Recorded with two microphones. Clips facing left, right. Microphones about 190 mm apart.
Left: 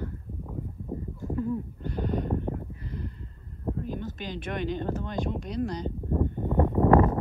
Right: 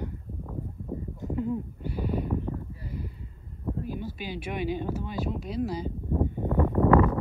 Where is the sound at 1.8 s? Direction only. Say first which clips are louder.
Left 1 dB; 10° right (ahead or behind).